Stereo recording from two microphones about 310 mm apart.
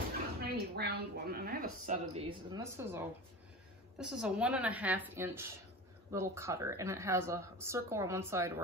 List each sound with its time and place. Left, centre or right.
0.5 s a woman's voice: right; by 8.6 s centre